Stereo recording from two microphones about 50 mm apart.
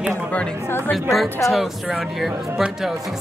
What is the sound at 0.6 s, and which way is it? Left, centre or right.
Speech, left.